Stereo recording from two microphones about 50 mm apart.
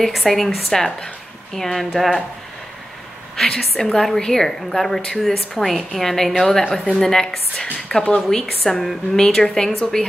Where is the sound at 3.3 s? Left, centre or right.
Centre.